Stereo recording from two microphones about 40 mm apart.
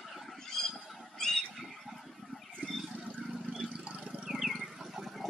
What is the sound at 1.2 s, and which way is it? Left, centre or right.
Squawk, centre.